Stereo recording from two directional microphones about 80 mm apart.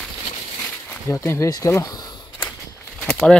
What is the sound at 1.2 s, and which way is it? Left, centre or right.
Speech, left.